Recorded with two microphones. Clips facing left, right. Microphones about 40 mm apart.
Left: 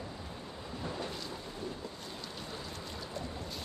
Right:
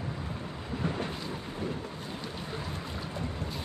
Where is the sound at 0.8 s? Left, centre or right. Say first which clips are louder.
Right 6 dB; right.